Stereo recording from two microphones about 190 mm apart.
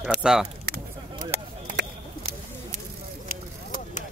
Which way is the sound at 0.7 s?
65° right (ahead or behind).